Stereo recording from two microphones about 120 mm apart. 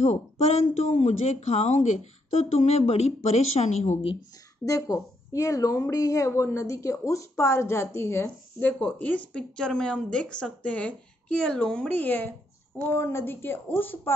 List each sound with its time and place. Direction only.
0.0 s speech: 70° left (ahead or behind)
4.6 s a woman's voice: 25° left (ahead or behind)